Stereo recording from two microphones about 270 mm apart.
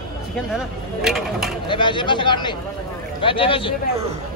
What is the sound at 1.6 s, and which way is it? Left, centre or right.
Speech, centre.